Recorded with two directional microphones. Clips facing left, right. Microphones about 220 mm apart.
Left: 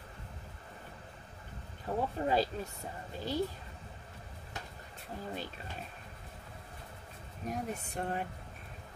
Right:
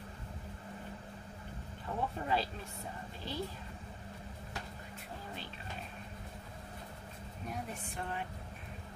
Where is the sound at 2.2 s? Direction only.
35° left (ahead or behind).